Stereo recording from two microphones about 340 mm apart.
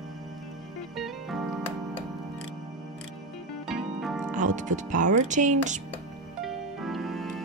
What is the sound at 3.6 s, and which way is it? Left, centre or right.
Music, centre.